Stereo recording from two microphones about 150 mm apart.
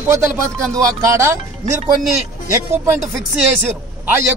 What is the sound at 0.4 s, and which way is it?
Speech, 20° right (ahead or behind).